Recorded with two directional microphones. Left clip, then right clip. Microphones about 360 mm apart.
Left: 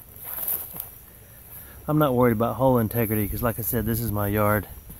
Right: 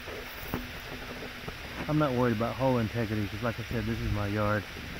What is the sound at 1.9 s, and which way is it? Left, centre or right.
Speech, centre.